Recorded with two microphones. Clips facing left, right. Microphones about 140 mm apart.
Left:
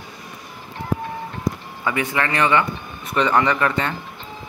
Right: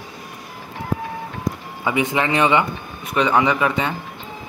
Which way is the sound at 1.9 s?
15° right (ahead or behind).